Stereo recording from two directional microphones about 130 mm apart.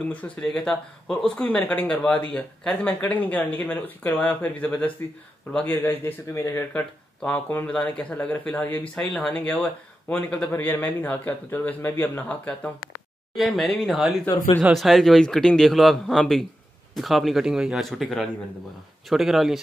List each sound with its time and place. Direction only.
0.1 s a man's voice: 10° left (ahead or behind)